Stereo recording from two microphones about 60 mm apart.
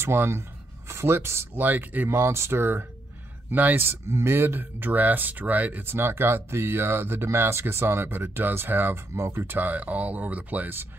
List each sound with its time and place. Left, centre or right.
0.0 s speech: right
1.5 s speech: right
2.0 s speech: right
9.1 s speech: right
9.6 s speech: right